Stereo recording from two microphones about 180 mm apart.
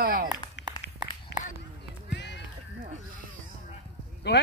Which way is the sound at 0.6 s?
80° left.